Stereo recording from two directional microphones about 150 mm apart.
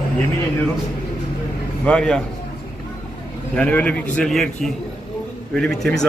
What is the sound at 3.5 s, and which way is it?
A man's voice, 10° left (ahead or behind).